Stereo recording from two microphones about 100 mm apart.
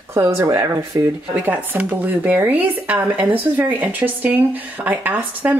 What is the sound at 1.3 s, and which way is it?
Speech, 20° right (ahead or behind).